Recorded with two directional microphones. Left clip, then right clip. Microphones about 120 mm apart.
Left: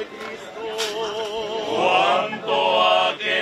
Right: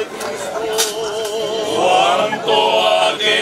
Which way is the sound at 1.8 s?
45° right (ahead or behind).